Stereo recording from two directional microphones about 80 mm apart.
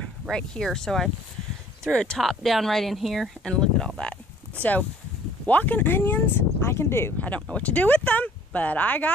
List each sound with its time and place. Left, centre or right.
0.3 s speech: centre
5.5 s speech: left
7.2 s speech: centre